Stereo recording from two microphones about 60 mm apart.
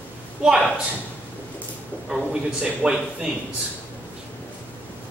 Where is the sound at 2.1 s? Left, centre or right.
Centre.